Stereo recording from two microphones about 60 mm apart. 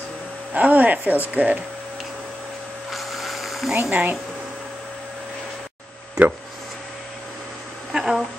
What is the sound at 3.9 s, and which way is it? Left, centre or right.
Speech, right.